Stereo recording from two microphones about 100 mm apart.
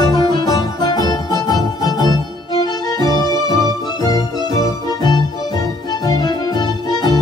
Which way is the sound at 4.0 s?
40° left (ahead or behind).